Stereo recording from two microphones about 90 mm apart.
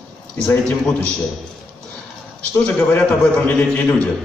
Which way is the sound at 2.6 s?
15° left (ahead or behind).